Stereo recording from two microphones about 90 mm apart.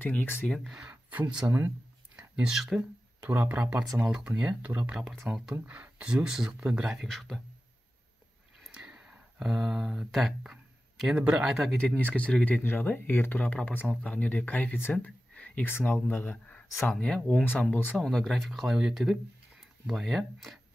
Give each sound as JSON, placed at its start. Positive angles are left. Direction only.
{"t": 0.0, "sound": "speech", "side_deg": 20}
{"t": 0.7, "sound": "speech", "side_deg": -10}
{"t": 3.2, "sound": "speech", "side_deg": -20}
{"t": 4.0, "sound": "speech", "side_deg": -5}
{"t": 5.1, "sound": "speech", "side_deg": 0}
{"t": 8.6, "sound": "speech", "side_deg": -10}
{"t": 11.7, "sound": "speech", "side_deg": 10}
{"t": 17.5, "sound": "speech", "side_deg": 20}
{"t": 17.9, "sound": "speech", "side_deg": 5}